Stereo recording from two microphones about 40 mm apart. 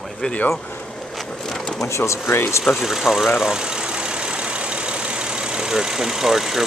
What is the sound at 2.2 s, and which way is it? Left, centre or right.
Speech, left.